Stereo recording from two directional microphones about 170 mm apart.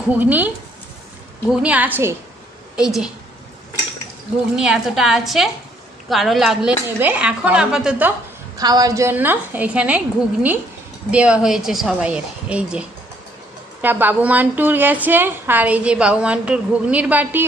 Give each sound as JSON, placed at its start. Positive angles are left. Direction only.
{"t": 0.1, "sound": "a woman's voice", "side_deg": -10}
{"t": 1.5, "sound": "a woman's voice", "side_deg": -5}
{"t": 4.6, "sound": "speech", "side_deg": -5}
{"t": 8.5, "sound": "a woman's voice", "side_deg": -20}